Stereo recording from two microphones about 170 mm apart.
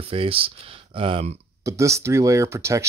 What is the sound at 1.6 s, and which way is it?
Speech, 20° right (ahead or behind).